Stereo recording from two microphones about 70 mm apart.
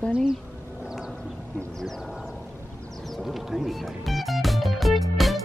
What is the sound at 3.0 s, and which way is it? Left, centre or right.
Music, centre.